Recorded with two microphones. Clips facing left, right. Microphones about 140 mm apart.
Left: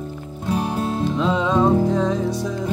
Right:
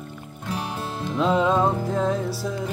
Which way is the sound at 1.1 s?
5° right (ahead or behind).